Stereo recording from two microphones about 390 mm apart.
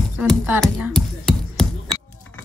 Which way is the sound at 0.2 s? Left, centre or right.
Centre.